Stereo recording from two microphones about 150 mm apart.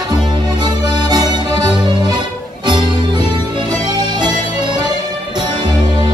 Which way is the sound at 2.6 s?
30° right (ahead or behind).